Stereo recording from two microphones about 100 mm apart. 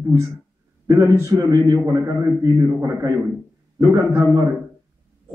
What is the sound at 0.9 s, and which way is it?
A man's voice, 35° right (ahead or behind).